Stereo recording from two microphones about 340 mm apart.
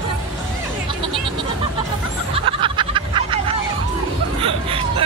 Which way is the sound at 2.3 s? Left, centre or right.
Centre.